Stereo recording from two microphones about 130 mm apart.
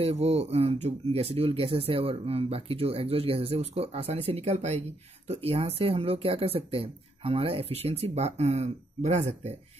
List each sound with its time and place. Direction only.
0.0 s speech: 50° right (ahead or behind)